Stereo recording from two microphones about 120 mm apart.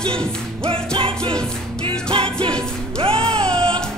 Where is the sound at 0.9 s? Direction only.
45° right (ahead or behind).